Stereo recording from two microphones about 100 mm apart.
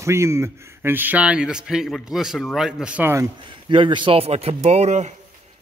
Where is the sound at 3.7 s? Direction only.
55° right (ahead or behind).